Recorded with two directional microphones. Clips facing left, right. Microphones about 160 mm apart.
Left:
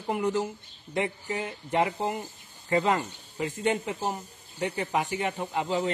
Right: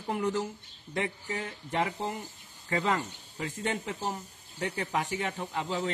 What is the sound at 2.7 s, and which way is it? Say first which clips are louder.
A man's voice: left 4 dB; 30° left (ahead or behind).